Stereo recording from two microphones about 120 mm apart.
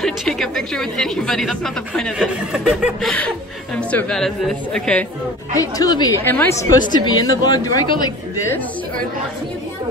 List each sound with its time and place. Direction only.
0.0 s a woman's voice: 5° left (ahead or behind)
5.5 s a woman's voice: 30° left (ahead or behind)
6.1 s speech: 15° left (ahead or behind)
6.9 s a woman's voice: 35° left (ahead or behind)